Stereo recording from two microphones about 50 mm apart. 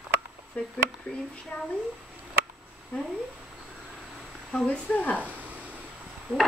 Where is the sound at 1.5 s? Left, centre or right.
Left.